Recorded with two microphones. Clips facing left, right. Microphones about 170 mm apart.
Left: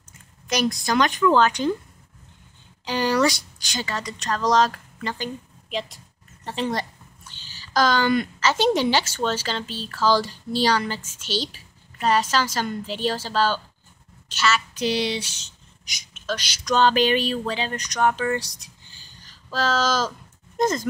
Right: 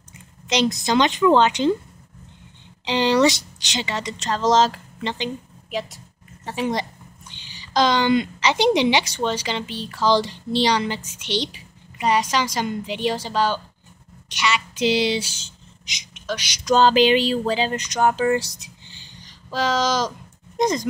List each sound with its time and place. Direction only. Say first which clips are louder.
0.5 s speech: right 3 dB; 20° right (ahead or behind)
2.8 s speech: right 3 dB; 25° right (ahead or behind)
6.4 s a woman's voice: right 2 dB; 10° right (ahead or behind)
14.8 s speech: right 4 dB; 25° right (ahead or behind)
15.8 s a sound: right 3 dB; 20° right (ahead or behind)
16.6 s speech: right 4 dB; 30° right (ahead or behind)